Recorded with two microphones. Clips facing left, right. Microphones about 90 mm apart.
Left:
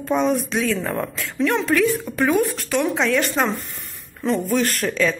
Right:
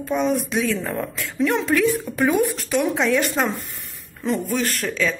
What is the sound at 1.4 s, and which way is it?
A woman's voice, 15° right (ahead or behind).